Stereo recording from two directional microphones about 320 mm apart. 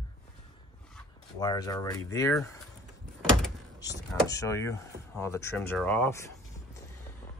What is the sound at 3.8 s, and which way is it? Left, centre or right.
Speech, centre.